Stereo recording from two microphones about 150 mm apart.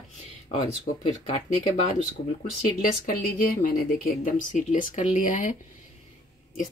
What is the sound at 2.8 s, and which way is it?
Speech, 70° left (ahead or behind).